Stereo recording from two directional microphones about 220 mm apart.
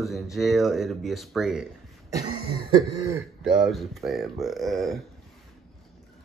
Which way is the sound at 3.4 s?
Centre (ahead or behind).